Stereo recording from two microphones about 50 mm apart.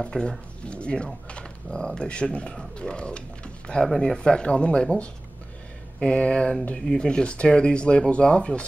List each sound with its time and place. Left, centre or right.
0.0 s speech: centre